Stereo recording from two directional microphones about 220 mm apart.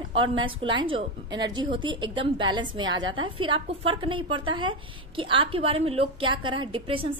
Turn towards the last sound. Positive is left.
turn(degrees=-25)  # may be behind; listen again after turning